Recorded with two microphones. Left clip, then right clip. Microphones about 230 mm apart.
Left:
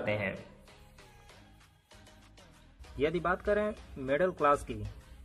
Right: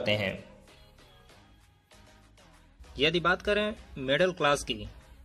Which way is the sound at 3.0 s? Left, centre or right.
Centre.